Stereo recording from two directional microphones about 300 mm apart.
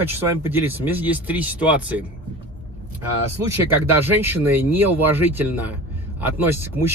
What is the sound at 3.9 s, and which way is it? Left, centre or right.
Speech, centre.